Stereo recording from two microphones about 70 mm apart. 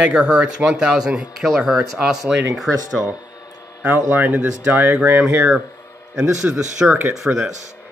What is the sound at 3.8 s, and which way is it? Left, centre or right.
Speech, right.